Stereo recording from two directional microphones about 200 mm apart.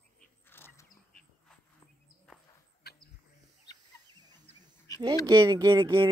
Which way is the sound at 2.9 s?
55° left (ahead or behind).